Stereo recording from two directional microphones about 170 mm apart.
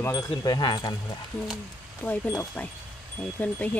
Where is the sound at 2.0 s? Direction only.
10° left (ahead or behind).